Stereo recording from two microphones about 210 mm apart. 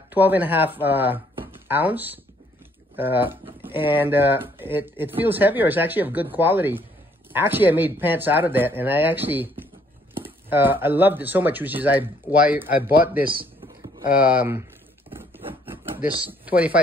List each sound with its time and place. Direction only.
0.1 s speech: 10° right (ahead or behind)
14.2 s speech: 5° right (ahead or behind)
16.2 s speech: 5° right (ahead or behind)